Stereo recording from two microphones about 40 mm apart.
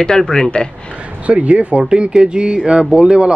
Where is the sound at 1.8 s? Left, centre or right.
Right.